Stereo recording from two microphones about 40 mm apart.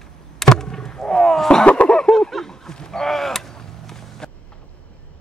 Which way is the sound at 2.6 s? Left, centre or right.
Centre.